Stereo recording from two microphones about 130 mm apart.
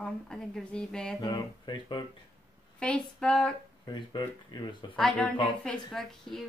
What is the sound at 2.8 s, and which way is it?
Speech, 5° left (ahead or behind).